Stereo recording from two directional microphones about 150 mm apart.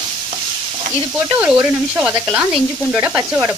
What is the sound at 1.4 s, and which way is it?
Speech, 10° right (ahead or behind).